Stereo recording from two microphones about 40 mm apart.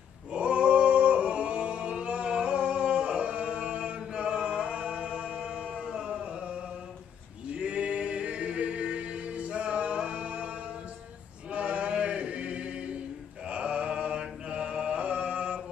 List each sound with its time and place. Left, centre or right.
0.3 s music: right
7.5 s a capella: right
11.5 s chant: right
13.5 s mantra: right
14.5 s chant: right